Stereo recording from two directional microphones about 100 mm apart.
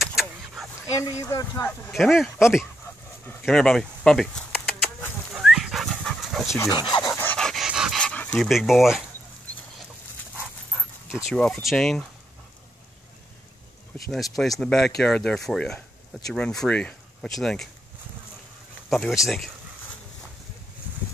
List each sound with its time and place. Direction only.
0.0 s vehicle: 5° right (ahead or behind)
0.8 s speech: 35° left (ahead or behind)
1.9 s speech: centre (ahead or behind)
5.3 s dog: 5° right (ahead or behind)
6.7 s speech: 50° left (ahead or behind)
7.3 s dog: 5° left (ahead or behind)
7.6 s dog: 5° right (ahead or behind)
8.0 s dog: 15° left (ahead or behind)
8.4 s speech: centre (ahead or behind)
11.1 s speech: 10° right (ahead or behind)
11.3 s speech: 5° left (ahead or behind)
13.9 s speech: centre (ahead or behind)
18.9 s speech: centre (ahead or behind)